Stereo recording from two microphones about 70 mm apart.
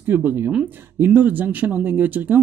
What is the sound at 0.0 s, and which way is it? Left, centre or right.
Speech, right.